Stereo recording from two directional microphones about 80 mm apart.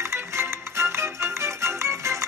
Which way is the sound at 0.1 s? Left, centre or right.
Right.